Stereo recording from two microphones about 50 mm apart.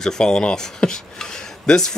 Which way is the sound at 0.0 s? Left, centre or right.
Centre.